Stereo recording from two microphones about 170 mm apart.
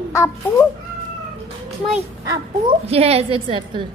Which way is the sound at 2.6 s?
35° right (ahead or behind).